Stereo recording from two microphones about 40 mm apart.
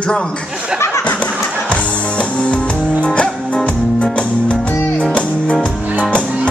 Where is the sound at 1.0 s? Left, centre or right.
Left.